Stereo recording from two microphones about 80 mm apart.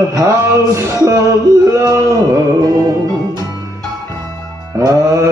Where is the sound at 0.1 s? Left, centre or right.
Right.